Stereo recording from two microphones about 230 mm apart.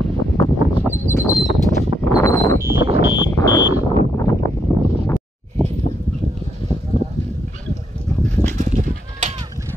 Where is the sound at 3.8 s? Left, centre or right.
Centre.